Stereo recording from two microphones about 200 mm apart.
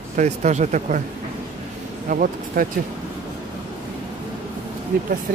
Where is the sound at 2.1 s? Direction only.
45° right (ahead or behind).